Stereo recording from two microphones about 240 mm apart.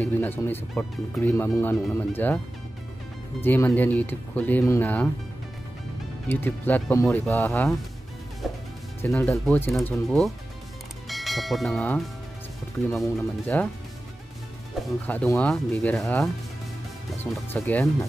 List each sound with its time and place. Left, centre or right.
0.0 s speech: centre
6.2 s speech: centre
9.0 s speech: centre
13.5 s speech: centre
15.0 s speech: centre